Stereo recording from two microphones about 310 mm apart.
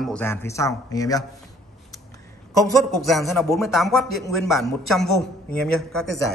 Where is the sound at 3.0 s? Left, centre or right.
Centre.